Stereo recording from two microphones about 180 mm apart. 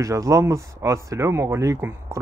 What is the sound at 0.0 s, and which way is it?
Speech, 20° right (ahead or behind).